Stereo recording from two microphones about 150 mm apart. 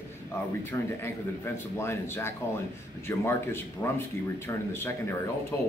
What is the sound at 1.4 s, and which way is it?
A man's voice, 15° left (ahead or behind).